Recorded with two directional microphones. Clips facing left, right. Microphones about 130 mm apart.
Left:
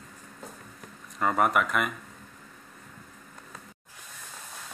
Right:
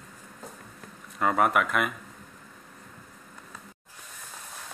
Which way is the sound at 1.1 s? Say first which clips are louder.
Right 1 dB; centre (ahead or behind).